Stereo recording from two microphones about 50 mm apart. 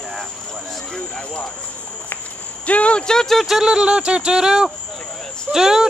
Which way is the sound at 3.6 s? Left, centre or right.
Centre.